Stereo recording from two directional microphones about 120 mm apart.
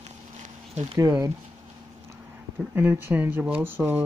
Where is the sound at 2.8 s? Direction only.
15° right (ahead or behind).